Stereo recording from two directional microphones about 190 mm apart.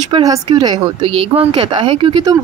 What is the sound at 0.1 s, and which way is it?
Speech, 20° right (ahead or behind).